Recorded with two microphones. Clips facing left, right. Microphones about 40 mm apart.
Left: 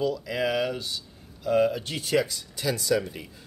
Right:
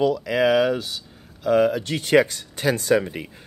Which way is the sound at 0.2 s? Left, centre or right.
Right.